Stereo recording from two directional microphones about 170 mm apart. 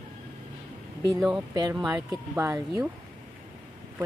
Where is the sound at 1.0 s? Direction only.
20° right (ahead or behind).